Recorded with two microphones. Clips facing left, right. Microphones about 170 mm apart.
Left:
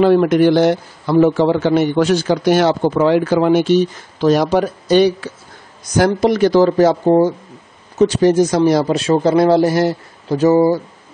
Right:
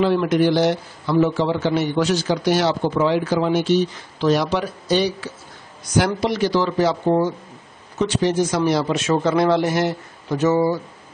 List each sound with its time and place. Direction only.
0.0 s a man's voice: 50° left (ahead or behind)
5.9 s a man's voice: 45° left (ahead or behind)